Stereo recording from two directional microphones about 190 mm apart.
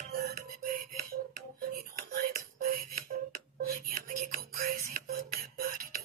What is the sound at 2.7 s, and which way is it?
Beatboxing, 50° right (ahead or behind).